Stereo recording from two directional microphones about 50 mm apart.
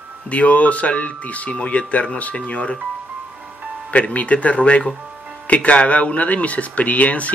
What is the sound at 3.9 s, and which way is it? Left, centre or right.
Speech, left.